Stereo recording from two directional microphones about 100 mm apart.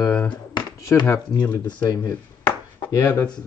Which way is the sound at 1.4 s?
45° left (ahead or behind).